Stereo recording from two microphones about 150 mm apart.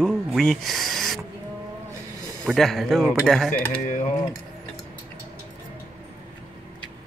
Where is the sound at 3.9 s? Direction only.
60° left (ahead or behind).